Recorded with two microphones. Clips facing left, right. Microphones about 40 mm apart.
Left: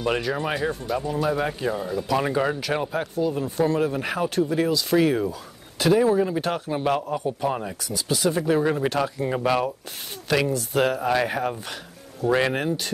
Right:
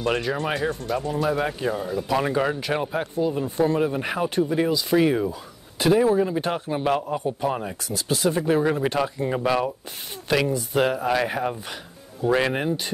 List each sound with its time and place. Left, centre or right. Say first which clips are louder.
0.0 s speech: even; centre
2.9 s speech: even; centre
3.9 s speech: even; centre
6.1 s speech: even; centre
8.8 s speech: even; centre
9.3 s speech: left 1 dB; centre
10.3 s speech: even; right
10.7 s speech: even; centre